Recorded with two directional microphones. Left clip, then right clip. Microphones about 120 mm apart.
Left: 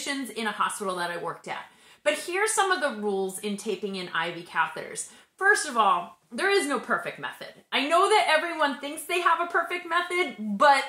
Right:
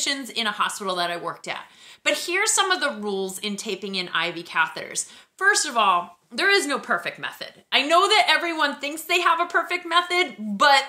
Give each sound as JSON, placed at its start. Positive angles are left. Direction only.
{"t": 0.0, "sound": "speech", "side_deg": -20}